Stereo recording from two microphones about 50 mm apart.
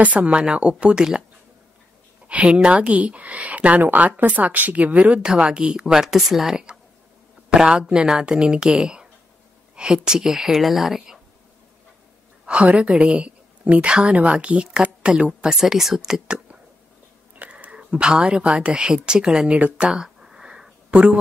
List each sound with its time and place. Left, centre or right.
0.0 s speech: right
0.3 s speech: right
2.2 s speech: right
5.2 s speech: centre
12.4 s a woman's voice: right
15.6 s speech: centre
17.5 s speech: right
19.6 s a sound: centre
20.9 s speech: right